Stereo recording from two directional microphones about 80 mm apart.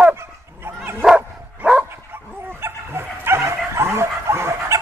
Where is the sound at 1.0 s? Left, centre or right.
Centre.